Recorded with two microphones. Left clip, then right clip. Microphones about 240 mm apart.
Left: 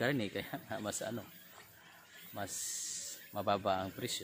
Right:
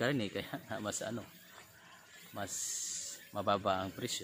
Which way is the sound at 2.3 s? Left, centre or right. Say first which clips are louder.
Right 1 dB; centre.